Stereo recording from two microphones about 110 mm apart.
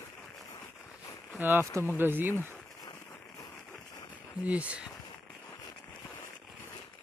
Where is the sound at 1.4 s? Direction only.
20° right (ahead or behind).